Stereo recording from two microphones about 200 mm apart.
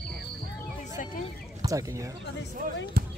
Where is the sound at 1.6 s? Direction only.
15° right (ahead or behind).